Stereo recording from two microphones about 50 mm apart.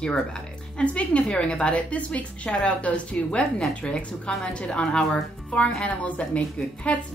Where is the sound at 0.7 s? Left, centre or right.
Left.